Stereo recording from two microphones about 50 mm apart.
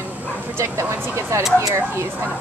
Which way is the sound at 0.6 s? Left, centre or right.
Right.